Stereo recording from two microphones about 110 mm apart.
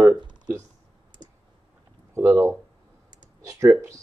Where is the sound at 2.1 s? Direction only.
25° right (ahead or behind).